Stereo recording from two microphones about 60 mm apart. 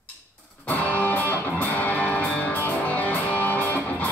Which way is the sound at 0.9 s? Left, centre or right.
Left.